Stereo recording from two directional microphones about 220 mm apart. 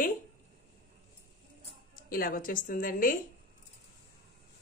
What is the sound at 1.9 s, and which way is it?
A woman's voice, 40° left (ahead or behind).